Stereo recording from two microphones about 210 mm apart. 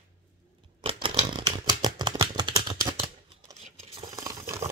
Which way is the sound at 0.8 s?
25° right (ahead or behind).